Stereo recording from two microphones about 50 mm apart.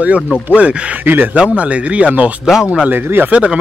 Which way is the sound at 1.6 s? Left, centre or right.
Right.